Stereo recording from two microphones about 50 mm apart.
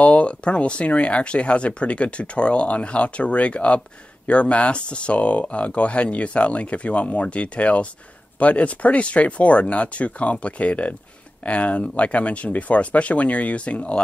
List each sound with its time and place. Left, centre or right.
0.0 s speech: left